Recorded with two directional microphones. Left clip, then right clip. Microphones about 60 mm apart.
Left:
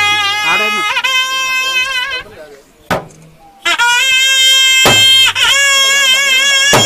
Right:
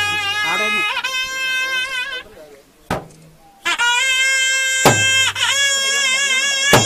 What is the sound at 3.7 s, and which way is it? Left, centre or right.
Music, centre.